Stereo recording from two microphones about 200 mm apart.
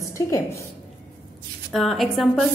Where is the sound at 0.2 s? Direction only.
20° left (ahead or behind).